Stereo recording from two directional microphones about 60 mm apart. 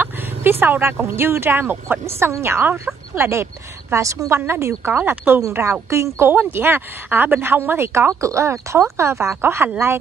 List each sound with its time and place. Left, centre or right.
0.0 s speech: right
3.9 s speech: right
4.6 s a woman's voice: right
8.1 s speech: right